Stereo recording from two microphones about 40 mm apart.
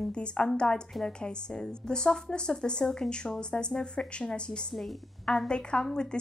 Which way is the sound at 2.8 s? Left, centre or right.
Centre.